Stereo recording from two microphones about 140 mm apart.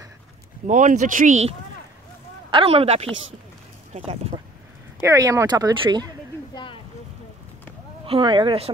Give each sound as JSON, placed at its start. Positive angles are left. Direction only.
{"t": 0.7, "sound": "speech", "side_deg": -60}
{"t": 2.5, "sound": "speech", "side_deg": -45}
{"t": 5.0, "sound": "speech", "side_deg": -20}
{"t": 6.5, "sound": "a sound", "side_deg": 35}
{"t": 8.2, "sound": "a woman's voice", "side_deg": -35}